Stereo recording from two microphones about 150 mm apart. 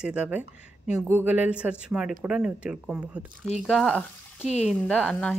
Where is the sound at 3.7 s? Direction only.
5° left (ahead or behind).